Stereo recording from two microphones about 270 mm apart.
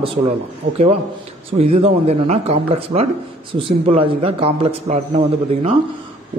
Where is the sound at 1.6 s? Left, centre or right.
Right.